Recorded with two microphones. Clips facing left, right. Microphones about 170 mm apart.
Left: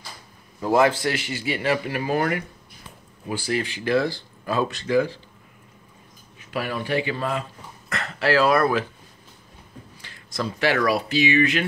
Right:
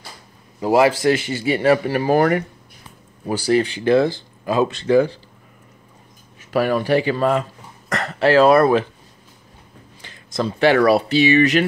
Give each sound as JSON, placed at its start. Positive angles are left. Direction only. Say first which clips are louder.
{"t": 0.6, "sound": "a man's voice", "louder": "right 4 dB", "side_deg": -10}
{"t": 1.0, "sound": "speech", "louder": "right 8 dB", "side_deg": -25}
{"t": 1.6, "sound": "speech", "louder": "right 8 dB", "side_deg": -40}
{"t": 3.4, "sound": "speech", "louder": "right 9 dB", "side_deg": -30}
{"t": 6.5, "sound": "speech", "louder": "right 8 dB", "side_deg": -45}
{"t": 8.2, "sound": "speech", "louder": "right 6 dB", "side_deg": -25}
{"t": 10.0, "sound": "a sound", "louder": "right 6 dB", "side_deg": -25}
{"t": 10.9, "sound": "speech", "louder": "right 6 dB", "side_deg": -30}